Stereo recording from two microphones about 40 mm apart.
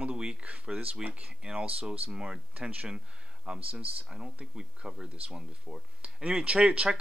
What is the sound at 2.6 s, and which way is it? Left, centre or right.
Speech, right.